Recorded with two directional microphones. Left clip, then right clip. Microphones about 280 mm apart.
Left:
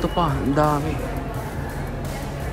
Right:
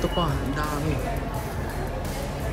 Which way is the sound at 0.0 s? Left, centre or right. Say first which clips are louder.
Left 4 dB; centre.